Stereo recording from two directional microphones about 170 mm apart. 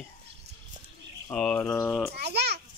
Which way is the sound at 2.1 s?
75° right (ahead or behind).